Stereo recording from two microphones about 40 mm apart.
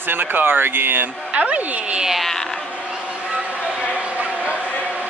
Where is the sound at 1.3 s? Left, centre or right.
Right.